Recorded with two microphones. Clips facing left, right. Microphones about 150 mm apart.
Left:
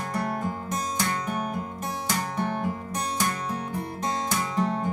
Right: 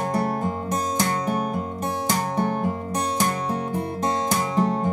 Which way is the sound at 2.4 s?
35° right (ahead or behind).